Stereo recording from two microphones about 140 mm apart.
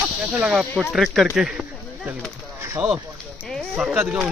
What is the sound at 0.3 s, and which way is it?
Speech, 5° right (ahead or behind).